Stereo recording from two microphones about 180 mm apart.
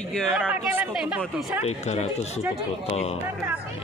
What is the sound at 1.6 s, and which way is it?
Speech, 35° left (ahead or behind).